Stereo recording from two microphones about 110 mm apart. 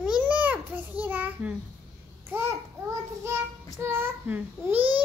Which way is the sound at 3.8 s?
20° right (ahead or behind).